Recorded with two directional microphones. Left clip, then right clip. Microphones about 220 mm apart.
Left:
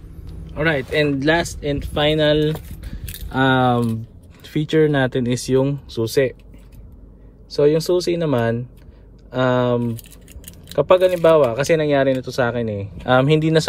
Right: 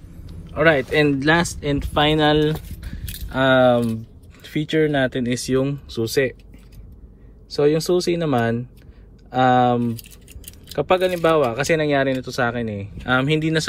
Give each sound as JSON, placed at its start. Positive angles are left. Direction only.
{"t": 0.3, "sound": "speech", "side_deg": 5}
{"t": 3.3, "sound": "speech", "side_deg": 15}
{"t": 7.4, "sound": "speech", "side_deg": 10}